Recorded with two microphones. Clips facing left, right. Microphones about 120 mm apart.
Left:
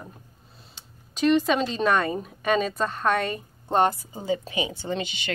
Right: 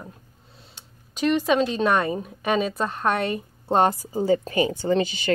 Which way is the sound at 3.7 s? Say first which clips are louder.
Right 2 dB; 25° right (ahead or behind).